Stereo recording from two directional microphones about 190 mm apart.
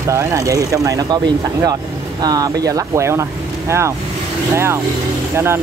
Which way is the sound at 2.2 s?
20° right (ahead or behind).